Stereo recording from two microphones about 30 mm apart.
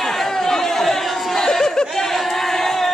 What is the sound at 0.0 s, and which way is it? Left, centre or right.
Chatter, centre.